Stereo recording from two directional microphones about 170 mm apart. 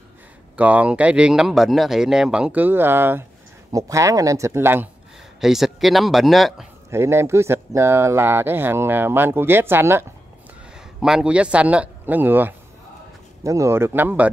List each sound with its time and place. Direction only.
0.6 s speech: 10° right (ahead or behind)
5.4 s speech: centre (ahead or behind)
6.9 s speech: 15° right (ahead or behind)